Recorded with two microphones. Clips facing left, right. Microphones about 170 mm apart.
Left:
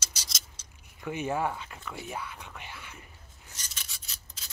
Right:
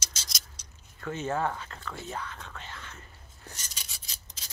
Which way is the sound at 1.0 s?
15° left (ahead or behind).